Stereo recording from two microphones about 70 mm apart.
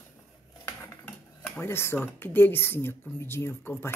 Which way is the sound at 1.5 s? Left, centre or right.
Left.